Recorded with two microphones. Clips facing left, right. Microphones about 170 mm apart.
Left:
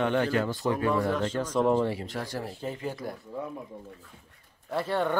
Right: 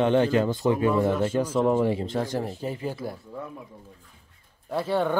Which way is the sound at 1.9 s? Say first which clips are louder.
Right 7 dB; 25° right (ahead or behind).